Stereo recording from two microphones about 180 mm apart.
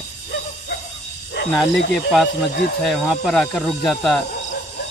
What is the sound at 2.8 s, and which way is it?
Speech, centre (ahead or behind).